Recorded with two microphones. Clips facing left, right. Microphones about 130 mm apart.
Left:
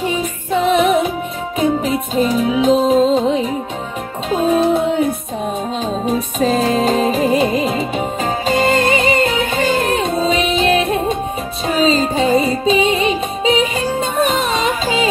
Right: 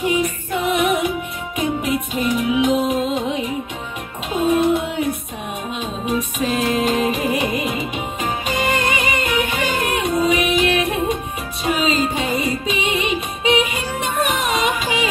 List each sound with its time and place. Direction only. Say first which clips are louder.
0.0 s music: even; 25° left (ahead or behind)
4.5 s a sound: left 3 dB; 30° left (ahead or behind)
6.0 s music: left 4 dB; 35° left (ahead or behind)